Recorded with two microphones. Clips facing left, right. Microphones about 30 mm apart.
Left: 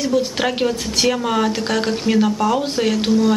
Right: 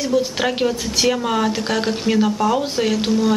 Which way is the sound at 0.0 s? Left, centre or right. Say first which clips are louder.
Even; centre.